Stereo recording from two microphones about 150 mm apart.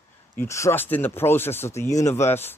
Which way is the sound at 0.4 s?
20° left (ahead or behind).